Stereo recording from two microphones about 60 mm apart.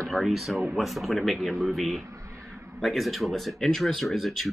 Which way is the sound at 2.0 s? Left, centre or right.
Right.